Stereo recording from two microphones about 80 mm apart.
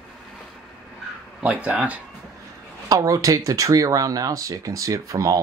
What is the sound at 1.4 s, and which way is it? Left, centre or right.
Speech, centre.